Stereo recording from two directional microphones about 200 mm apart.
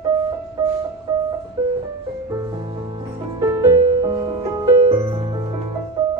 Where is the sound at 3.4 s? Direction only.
20° right (ahead or behind).